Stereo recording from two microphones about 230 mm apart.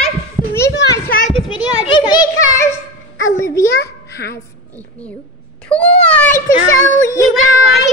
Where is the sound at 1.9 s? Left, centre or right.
Centre.